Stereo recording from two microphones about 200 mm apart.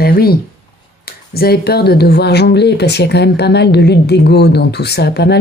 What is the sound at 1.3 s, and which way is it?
Speech, 50° left (ahead or behind).